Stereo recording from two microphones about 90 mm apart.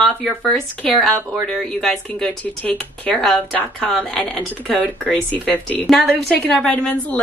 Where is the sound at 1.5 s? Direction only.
5° left (ahead or behind).